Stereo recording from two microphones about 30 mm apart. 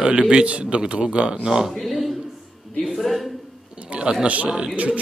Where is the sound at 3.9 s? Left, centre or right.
Right.